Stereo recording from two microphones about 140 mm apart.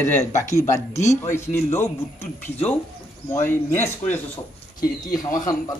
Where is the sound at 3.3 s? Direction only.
15° left (ahead or behind).